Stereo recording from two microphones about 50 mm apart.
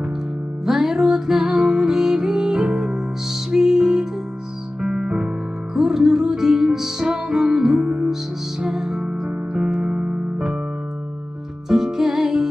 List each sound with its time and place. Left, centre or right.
0.7 s music: centre
11.7 s music: centre